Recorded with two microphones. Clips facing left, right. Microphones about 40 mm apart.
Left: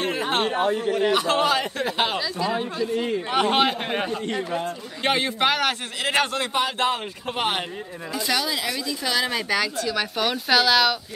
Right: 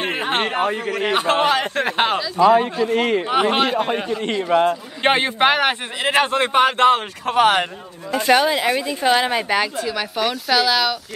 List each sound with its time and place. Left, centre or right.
0.0 s a sound: right
0.5 s speech: right
1.1 s speech: right
2.1 s speech: centre
2.5 s a man's voice: right
3.5 s speech: centre
4.1 s speech: right
5.0 s a man's voice: right
7.2 s a man's voice: right
8.1 s speech: right
9.9 s speech: centre